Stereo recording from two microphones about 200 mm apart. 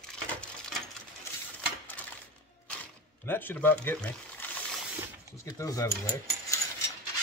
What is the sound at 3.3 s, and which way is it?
Speech, 10° left (ahead or behind).